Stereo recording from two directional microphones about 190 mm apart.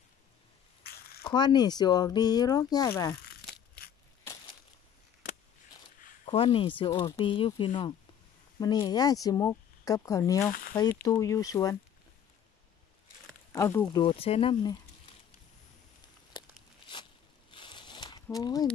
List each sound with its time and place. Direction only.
0.8 s a sound: 55° left (ahead or behind)
1.2 s speech: 20° left (ahead or behind)
3.3 s crumpling: 55° left (ahead or behind)
6.2 s speech: 30° left (ahead or behind)
13.5 s speech: 15° left (ahead or behind)
17.5 s a sound: 25° left (ahead or behind)